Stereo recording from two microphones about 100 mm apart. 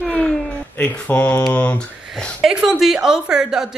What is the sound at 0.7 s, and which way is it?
Speech, 15° left (ahead or behind).